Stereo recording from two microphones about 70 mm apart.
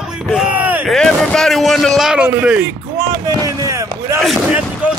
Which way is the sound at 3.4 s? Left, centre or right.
Right.